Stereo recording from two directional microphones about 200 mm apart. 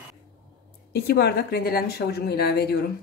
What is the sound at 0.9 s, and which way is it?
A woman's voice, 55° left (ahead or behind).